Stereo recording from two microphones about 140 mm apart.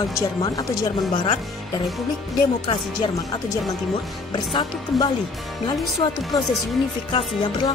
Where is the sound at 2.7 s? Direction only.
35° left (ahead or behind).